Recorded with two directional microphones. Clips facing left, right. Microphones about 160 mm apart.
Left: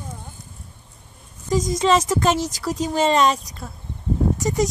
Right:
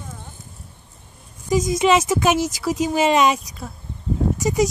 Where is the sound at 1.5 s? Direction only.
5° right (ahead or behind).